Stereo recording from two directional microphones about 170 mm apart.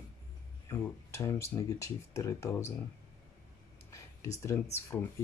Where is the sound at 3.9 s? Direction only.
20° left (ahead or behind).